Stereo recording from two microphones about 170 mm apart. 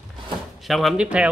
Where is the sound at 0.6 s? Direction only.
Centre (ahead or behind).